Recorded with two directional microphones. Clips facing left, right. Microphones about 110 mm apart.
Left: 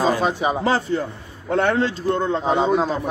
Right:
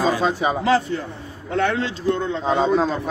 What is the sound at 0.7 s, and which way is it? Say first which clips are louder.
A man's voice: right 1 dB; 35° left (ahead or behind).